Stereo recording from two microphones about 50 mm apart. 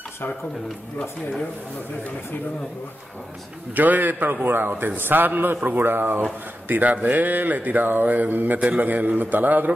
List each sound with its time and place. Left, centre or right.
3.7 s speech: right
6.7 s speech: right